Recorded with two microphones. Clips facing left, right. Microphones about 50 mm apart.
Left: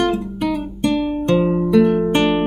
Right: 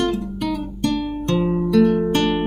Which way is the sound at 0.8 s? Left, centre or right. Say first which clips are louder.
Left 4 dB; left.